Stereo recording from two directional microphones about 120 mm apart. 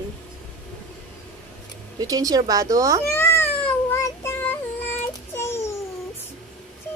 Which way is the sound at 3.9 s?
20° left (ahead or behind).